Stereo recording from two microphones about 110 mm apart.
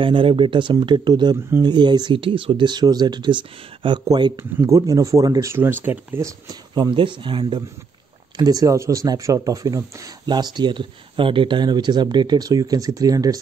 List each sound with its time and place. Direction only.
0.0 s speech: 55° right (ahead or behind); by 5.5 s 30° right (ahead or behind)
5.5 s speech: 20° right (ahead or behind)
6.7 s speech: 45° right (ahead or behind)
8.4 s speech: 35° right (ahead or behind)